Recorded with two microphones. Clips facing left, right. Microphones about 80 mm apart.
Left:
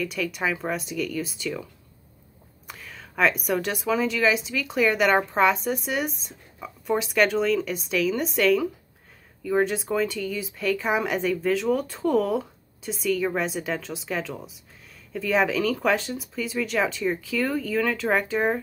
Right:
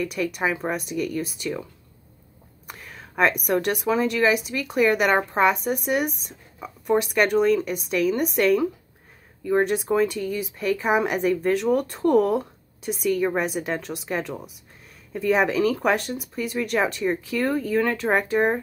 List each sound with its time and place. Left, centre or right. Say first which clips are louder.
0.0 s a woman's voice: right 2 dB; centre
2.7 s a woman's voice: right 2 dB; centre